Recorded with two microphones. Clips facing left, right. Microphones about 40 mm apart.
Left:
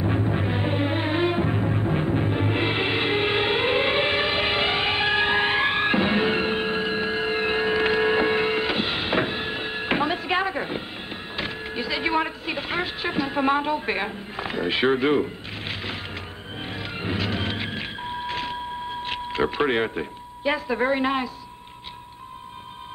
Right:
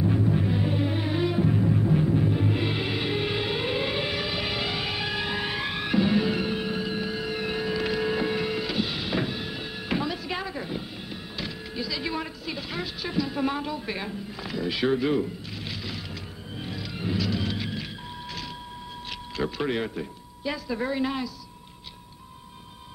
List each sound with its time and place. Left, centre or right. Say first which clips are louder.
0.0 s music: even; left
11.3 s a sound: left 5 dB; left
16.6 s vehicle: left 2 dB; left